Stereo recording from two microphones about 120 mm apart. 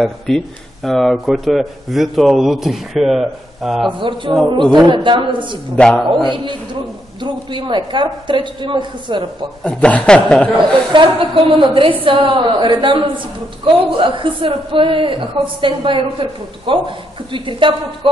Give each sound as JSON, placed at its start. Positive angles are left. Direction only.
{"t": 0.3, "sound": "a man's voice", "side_deg": 5}
{"t": 3.8, "sound": "a woman's voice", "side_deg": -40}
{"t": 5.8, "sound": "a man's voice", "side_deg": 5}
{"t": 6.3, "sound": "a man's voice", "side_deg": -40}
{"t": 9.6, "sound": "a man's voice", "side_deg": 10}
{"t": 10.9, "sound": "a woman's voice", "side_deg": -45}